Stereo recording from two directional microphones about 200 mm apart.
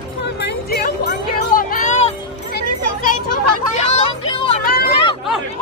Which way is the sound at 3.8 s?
30° left (ahead or behind).